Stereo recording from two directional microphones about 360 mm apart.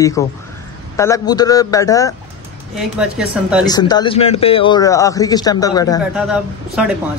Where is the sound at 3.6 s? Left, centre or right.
Centre.